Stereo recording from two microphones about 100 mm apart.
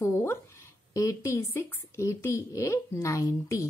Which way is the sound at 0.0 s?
25° left (ahead or behind).